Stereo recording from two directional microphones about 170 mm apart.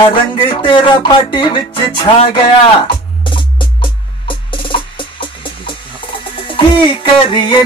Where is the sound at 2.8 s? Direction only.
30° left (ahead or behind).